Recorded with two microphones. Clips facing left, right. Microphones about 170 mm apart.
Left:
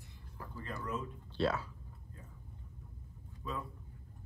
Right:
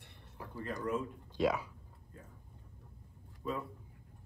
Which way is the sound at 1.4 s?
15° right (ahead or behind).